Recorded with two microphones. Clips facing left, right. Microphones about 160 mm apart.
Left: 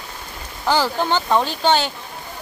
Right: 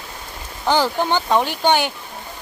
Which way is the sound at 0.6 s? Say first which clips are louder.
Right 1 dB; 15° right (ahead or behind).